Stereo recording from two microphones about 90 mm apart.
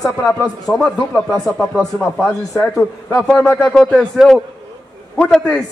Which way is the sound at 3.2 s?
10° left (ahead or behind).